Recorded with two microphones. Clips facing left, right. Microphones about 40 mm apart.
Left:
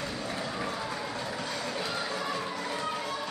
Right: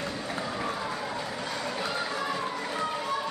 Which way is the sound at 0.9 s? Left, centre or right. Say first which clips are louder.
Right 1 dB; centre.